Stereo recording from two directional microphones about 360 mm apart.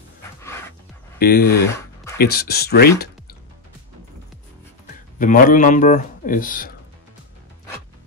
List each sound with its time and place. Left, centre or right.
0.4 s music: centre
1.2 s speech: left
5.2 s speech: left